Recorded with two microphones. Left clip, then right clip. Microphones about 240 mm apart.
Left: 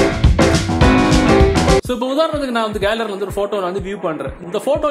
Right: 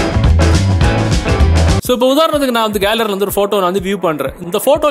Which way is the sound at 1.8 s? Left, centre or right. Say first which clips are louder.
Right 6 dB; right.